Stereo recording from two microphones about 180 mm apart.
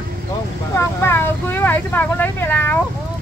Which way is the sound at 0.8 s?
15° left (ahead or behind).